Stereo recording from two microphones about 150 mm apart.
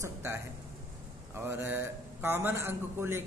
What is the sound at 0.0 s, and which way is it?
A man's voice, 20° right (ahead or behind).